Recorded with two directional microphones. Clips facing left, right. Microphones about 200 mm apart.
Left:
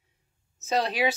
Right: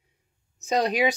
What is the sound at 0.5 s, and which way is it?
Speech, 15° right (ahead or behind).